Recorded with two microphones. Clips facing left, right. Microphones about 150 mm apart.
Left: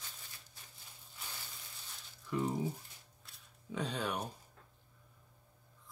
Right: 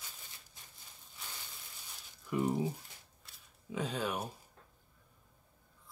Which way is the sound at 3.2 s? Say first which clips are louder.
Right 1 dB; centre (ahead or behind).